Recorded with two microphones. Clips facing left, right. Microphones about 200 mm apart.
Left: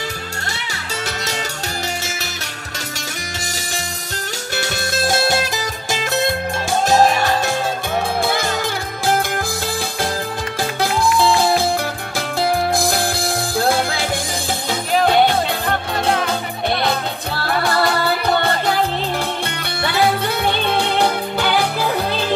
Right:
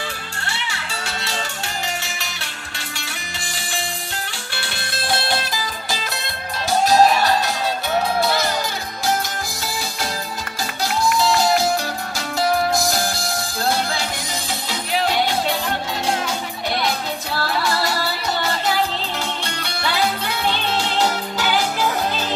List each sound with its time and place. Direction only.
4.6 s music: 45° left (ahead or behind)
10.8 s music: 55° left (ahead or behind)
12.7 s music: 55° left (ahead or behind)